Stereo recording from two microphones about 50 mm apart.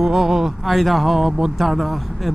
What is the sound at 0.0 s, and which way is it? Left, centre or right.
Speech, centre.